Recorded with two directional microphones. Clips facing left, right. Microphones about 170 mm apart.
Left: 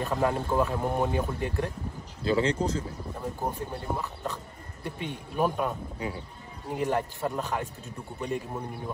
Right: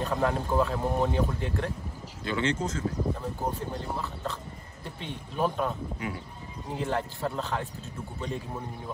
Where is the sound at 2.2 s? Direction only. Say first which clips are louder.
Left 3 dB; 35° left (ahead or behind).